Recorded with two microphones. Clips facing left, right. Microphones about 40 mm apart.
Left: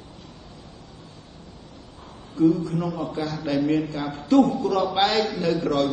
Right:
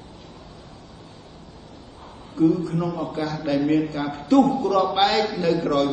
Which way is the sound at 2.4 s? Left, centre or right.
Centre.